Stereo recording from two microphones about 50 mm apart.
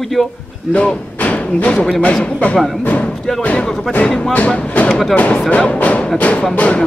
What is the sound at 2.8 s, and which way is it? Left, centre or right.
Music, left.